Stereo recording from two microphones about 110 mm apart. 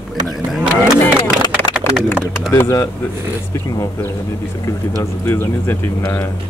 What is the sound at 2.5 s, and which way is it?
Speech, 25° left (ahead or behind).